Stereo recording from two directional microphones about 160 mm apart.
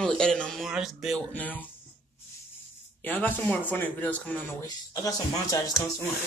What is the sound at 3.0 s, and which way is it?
A man's voice, 10° left (ahead or behind).